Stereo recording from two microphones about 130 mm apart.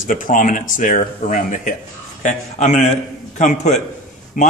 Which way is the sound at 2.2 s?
65° left (ahead or behind).